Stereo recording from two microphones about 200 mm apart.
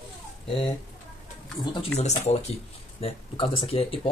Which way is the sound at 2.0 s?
35° left (ahead or behind).